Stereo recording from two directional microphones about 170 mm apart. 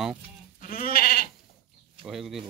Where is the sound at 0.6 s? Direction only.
55° left (ahead or behind).